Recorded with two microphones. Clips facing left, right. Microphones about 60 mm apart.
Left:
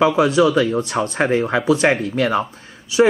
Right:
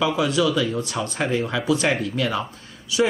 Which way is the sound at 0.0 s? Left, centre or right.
Left.